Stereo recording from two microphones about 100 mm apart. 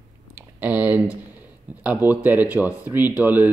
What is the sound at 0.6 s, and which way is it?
Speech, 15° right (ahead or behind).